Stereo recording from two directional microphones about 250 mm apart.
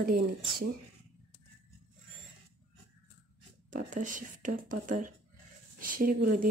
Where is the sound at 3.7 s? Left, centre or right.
Right.